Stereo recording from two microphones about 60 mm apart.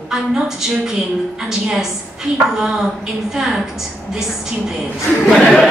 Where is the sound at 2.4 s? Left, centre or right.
Centre.